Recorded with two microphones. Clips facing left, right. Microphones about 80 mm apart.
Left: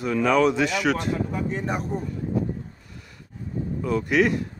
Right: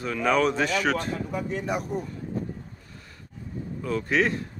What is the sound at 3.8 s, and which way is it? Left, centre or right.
Speech, left.